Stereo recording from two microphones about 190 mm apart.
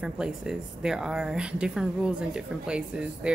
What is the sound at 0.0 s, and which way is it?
A woman's voice, 5° right (ahead or behind).